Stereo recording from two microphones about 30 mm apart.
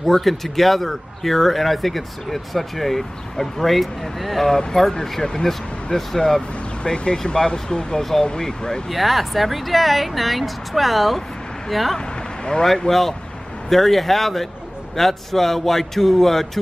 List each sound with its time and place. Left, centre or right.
0.0 s speech: centre
5.2 s speech: left
5.9 s a man's voice: centre
6.8 s speech: left
8.8 s speech: centre
12.9 s speech: left
13.7 s a man's voice: centre